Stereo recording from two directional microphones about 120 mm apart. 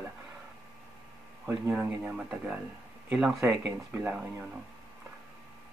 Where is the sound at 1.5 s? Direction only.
10° right (ahead or behind).